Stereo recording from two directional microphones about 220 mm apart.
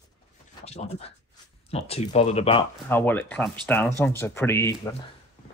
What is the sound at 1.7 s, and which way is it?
Speech, 30° left (ahead or behind).